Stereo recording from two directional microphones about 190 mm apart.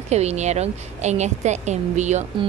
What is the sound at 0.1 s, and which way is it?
A woman's voice, 35° right (ahead or behind).